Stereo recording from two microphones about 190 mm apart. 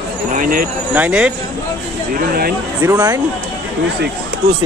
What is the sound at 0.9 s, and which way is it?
Speech, 5° right (ahead or behind).